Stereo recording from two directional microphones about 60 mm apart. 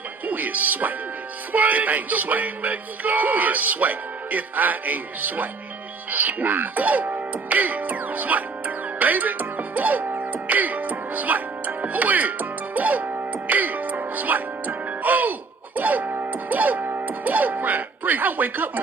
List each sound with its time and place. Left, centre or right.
0.3 s music: right
1.5 s speech: right
6.1 s music: right